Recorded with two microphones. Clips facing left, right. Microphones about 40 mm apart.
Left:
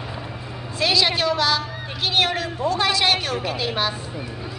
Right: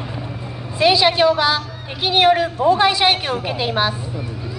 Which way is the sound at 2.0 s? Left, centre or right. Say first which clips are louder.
Right 7 dB; centre.